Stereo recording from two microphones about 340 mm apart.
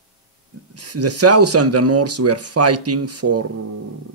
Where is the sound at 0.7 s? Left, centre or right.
Right.